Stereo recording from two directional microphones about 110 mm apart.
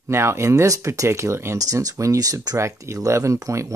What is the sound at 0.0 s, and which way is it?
Speech, 25° right (ahead or behind).